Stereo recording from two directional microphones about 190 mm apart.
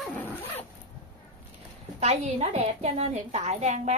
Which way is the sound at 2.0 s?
35° right (ahead or behind).